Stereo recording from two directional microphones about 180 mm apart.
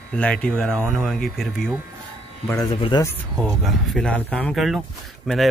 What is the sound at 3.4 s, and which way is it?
Speech, centre (ahead or behind).